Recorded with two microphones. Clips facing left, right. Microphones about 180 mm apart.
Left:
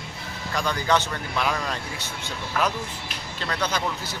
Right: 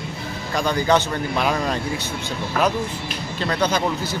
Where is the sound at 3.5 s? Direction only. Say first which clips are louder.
Right 6 dB; 25° right (ahead or behind).